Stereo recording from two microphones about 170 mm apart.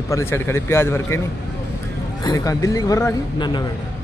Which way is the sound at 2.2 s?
20° left (ahead or behind).